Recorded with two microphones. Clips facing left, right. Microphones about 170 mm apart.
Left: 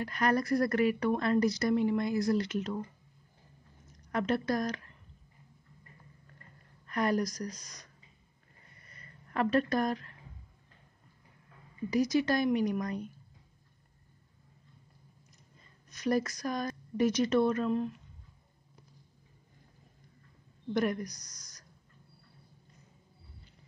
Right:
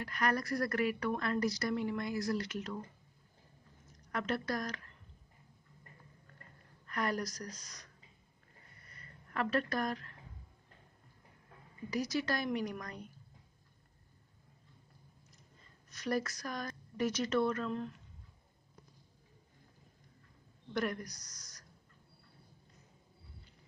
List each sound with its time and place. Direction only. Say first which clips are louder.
0.0 s speech: left 5 dB; 25° left (ahead or behind)
4.1 s speech: left 6 dB; 20° left (ahead or behind)
6.9 s a woman's voice: left 6 dB; 20° left (ahead or behind)
9.3 s speech: left 6 dB; 20° left (ahead or behind)
11.9 s speech: left 7 dB; 20° left (ahead or behind)
15.9 s a woman's voice: left 5 dB; 15° left (ahead or behind)
20.7 s a woman's voice: left 6 dB; 20° left (ahead or behind)